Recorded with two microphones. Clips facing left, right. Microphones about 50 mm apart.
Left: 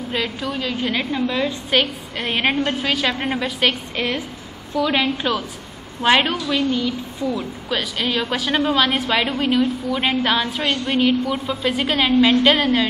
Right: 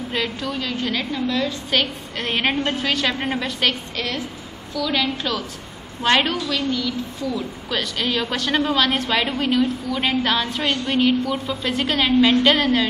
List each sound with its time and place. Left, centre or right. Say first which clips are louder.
0.1 s a woman's voice: left 1 dB; centre
3.9 s a woman's voice: left 3 dB; left
6.0 s a woman's voice: left 2 dB; centre
7.7 s a woman's voice: left 1 dB; centre